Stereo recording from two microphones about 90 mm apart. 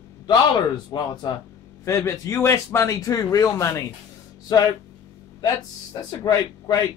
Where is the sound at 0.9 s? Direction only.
50° left (ahead or behind).